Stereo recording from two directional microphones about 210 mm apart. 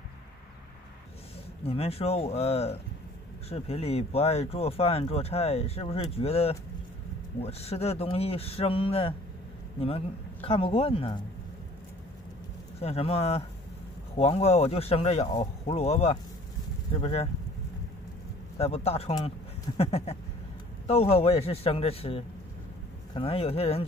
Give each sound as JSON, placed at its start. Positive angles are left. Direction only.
{"t": 1.7, "sound": "speech", "side_deg": 30}
{"t": 12.8, "sound": "speech", "side_deg": 30}
{"t": 18.6, "sound": "speech", "side_deg": 30}